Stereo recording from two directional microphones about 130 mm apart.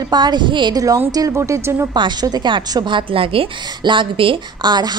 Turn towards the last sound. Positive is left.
turn(degrees=-35)  # may be behind; listen again after turning